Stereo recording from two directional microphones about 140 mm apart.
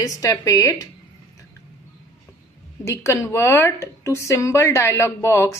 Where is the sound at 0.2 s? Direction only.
25° left (ahead or behind).